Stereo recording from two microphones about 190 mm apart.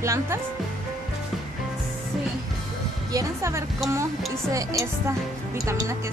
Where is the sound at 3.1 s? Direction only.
15° right (ahead or behind).